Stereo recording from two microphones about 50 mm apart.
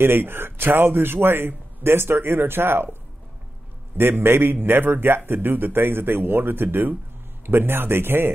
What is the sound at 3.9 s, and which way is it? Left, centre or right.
Speech, right.